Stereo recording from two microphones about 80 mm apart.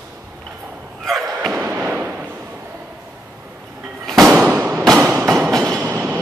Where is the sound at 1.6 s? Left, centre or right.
Centre.